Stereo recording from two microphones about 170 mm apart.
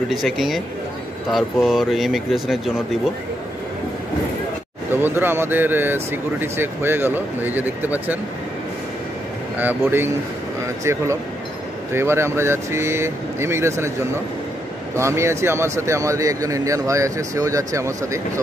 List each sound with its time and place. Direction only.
0.1 s a man's voice: centre (ahead or behind)
4.9 s speech: 15° right (ahead or behind)
9.6 s speech: 10° right (ahead or behind)
15.0 s speech: 15° right (ahead or behind)